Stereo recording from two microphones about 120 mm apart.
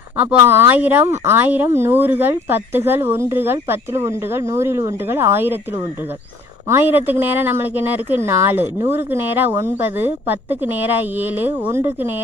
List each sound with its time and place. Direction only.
0.2 s speech: 15° right (ahead or behind)
6.7 s speech: 15° right (ahead or behind)